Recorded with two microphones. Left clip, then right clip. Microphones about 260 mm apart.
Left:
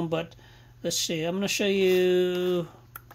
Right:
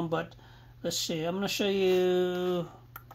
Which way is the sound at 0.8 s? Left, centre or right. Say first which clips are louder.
Left 3 dB; left.